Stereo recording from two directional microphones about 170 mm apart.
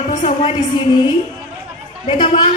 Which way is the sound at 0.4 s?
30° left (ahead or behind).